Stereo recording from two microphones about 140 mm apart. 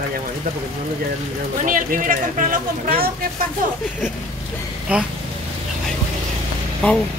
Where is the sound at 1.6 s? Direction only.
70° right (ahead or behind); by 3.3 s 90° right.